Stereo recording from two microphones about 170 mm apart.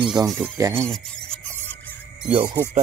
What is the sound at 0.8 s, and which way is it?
Filing, 5° left (ahead or behind).